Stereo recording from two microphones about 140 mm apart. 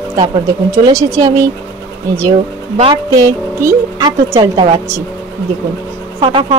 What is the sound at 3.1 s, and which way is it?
Speech, 20° right (ahead or behind).